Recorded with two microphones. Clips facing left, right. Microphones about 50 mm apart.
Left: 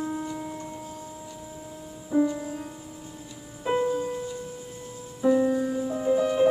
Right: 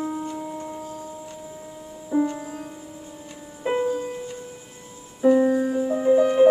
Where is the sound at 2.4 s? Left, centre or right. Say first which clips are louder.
Even; centre.